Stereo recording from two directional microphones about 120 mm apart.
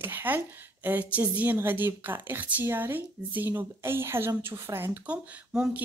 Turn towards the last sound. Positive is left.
turn(degrees=-10)  # may be behind; listen again after turning